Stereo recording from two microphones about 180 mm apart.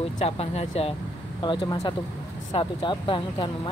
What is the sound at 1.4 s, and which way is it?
Speech, 25° left (ahead or behind).